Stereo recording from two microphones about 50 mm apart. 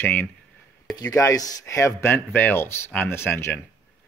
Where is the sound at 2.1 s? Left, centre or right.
Left.